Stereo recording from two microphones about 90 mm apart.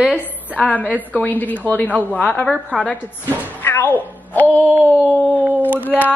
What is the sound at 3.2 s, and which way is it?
Speech, 25° left (ahead or behind).